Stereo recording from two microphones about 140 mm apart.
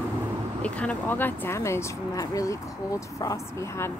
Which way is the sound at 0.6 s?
10° left (ahead or behind).